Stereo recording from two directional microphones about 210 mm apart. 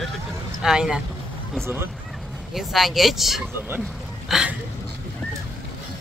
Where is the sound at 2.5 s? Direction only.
Centre (ahead or behind).